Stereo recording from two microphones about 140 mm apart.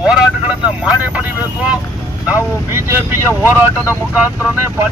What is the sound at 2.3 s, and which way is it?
Speech, 15° right (ahead or behind).